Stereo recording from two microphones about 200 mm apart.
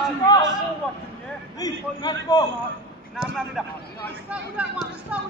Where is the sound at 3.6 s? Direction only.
5° right (ahead or behind).